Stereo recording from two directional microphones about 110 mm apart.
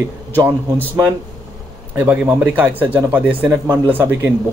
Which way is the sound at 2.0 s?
10° right (ahead or behind).